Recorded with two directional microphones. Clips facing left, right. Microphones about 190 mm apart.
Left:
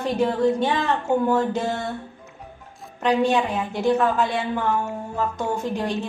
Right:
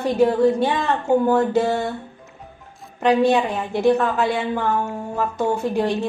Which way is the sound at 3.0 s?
10° right (ahead or behind).